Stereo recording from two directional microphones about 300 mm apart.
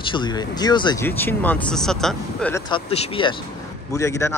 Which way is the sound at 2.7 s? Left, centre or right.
Centre.